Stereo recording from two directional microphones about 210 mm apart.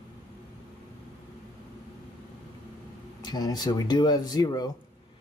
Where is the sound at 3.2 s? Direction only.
20° left (ahead or behind).